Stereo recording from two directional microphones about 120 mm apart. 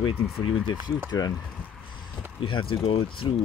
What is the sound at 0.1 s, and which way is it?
Speech, 10° right (ahead or behind).